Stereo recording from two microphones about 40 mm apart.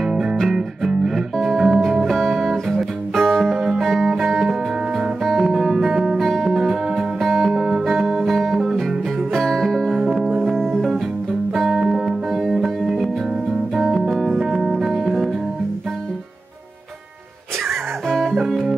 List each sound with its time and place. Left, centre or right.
0.1 s music: centre
0.8 s music: centre
5.2 s guitar: centre
6.1 s music: centre
7.5 s music: centre
7.8 s music: centre
11.7 s music: centre
12.3 s music: centre
12.5 s music: centre
14.4 s music: centre
18.0 s music: centre